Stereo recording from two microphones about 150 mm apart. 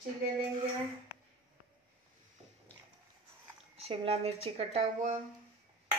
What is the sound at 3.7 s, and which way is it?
Speech, 40° right (ahead or behind).